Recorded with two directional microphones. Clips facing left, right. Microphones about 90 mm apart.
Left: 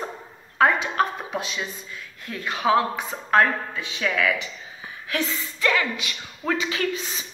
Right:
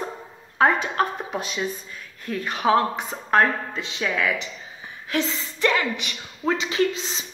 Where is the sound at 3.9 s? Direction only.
25° right (ahead or behind).